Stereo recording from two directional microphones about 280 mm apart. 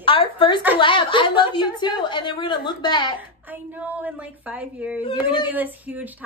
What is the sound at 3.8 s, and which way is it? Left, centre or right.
Speech, centre.